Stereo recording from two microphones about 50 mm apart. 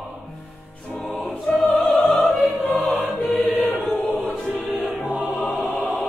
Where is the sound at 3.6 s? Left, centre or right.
Left.